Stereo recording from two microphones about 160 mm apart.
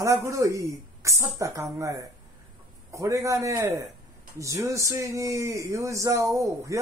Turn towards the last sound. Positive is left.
turn(degrees=-20)  # may be behind; listen again after turning